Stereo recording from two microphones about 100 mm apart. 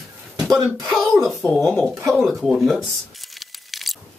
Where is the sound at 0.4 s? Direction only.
5° right (ahead or behind).